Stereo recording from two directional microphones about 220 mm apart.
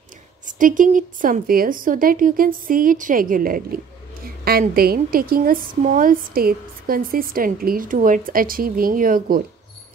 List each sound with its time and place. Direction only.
0.5 s a woman's voice: 35° right (ahead or behind)